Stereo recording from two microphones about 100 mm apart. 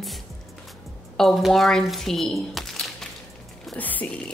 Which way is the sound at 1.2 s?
5° left (ahead or behind).